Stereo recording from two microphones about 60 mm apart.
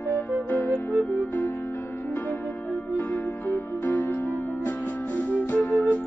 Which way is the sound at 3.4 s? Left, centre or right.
Left.